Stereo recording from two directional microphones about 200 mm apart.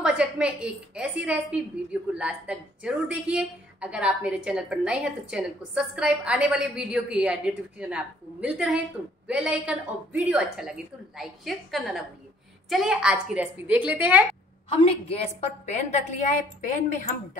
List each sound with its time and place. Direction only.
0.0 s a woman's voice: 5° right (ahead or behind)
14.7 s a woman's voice: 30° left (ahead or behind)